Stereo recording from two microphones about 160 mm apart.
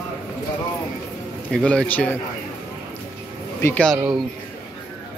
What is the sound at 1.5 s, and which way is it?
Speech, 5° left (ahead or behind).